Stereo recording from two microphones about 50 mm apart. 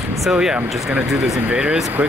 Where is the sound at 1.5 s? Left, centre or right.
Right.